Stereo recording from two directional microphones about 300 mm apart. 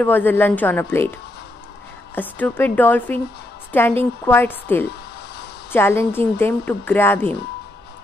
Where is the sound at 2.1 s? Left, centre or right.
Centre.